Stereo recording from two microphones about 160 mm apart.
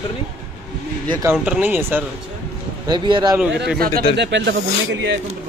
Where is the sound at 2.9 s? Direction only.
30° right (ahead or behind).